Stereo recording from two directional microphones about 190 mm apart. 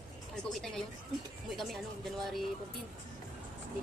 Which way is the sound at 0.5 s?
Centre (ahead or behind).